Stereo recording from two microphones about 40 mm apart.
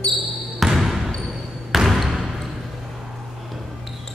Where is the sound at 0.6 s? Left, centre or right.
Centre.